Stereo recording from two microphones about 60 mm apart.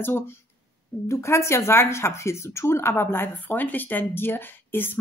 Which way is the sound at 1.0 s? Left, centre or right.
Left.